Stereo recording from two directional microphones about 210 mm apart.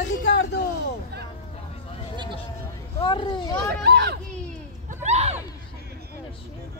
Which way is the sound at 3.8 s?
50° right (ahead or behind).